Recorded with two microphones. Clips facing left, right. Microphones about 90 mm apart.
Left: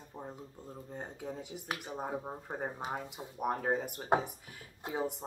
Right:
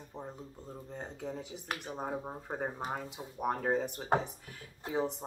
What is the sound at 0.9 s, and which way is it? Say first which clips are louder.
Speech: right 1 dB; 5° left (ahead or behind).